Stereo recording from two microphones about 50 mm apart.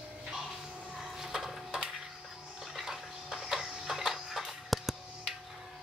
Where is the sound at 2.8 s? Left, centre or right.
Centre.